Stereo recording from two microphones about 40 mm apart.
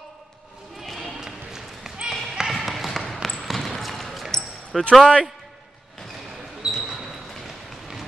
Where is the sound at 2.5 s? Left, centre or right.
Centre.